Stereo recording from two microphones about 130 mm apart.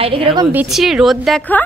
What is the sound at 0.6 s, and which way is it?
Speech, centre (ahead or behind).